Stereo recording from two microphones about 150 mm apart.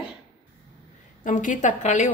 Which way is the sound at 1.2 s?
60° left (ahead or behind).